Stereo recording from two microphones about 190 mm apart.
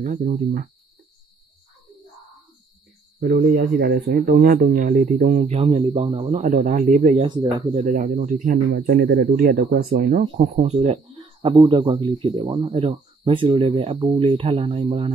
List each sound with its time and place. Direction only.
0.0 s a man's voice: 40° right (ahead or behind)
3.2 s a man's voice: 55° right (ahead or behind)
5.5 s speech: 30° right (ahead or behind)
7.7 s a man's voice: 40° right (ahead or behind)
11.4 s speech: 25° right (ahead or behind)